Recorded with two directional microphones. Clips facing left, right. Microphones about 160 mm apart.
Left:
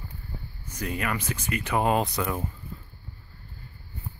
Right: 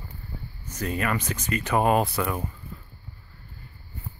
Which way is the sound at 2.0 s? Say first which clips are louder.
Right 1 dB; 20° left (ahead or behind).